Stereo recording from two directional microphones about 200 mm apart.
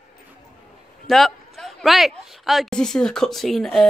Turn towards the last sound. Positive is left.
turn(degrees=0)  # may be behind; listen again after turning